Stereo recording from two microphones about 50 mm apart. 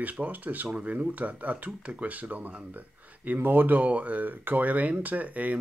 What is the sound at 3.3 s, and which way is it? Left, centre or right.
Speech, right.